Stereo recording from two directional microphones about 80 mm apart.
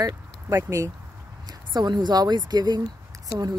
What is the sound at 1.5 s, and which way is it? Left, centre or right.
Speech, right.